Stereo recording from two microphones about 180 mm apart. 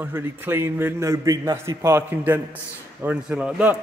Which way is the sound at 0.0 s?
10° right (ahead or behind).